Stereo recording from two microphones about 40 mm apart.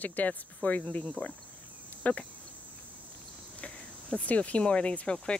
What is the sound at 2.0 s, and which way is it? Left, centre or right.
Speech, left.